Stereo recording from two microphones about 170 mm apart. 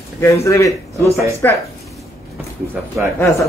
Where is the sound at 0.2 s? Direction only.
15° left (ahead or behind).